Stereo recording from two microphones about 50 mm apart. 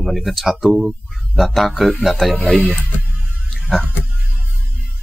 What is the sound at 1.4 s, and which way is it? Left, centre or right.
Speech, centre.